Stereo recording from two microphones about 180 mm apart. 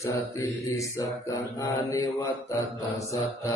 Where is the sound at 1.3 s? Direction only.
15° left (ahead or behind).